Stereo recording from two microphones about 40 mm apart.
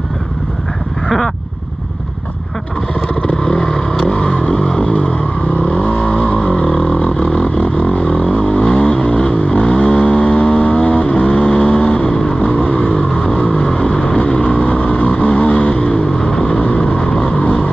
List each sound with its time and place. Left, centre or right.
1.0 s vehicle: centre
3.4 s vehicle: centre
15.9 s vehicle: centre
16.5 s vehicle: left